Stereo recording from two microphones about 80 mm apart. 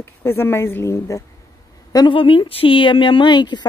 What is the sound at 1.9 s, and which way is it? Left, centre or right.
Speech, left.